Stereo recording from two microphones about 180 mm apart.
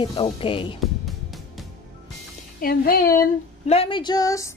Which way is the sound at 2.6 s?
55° left (ahead or behind).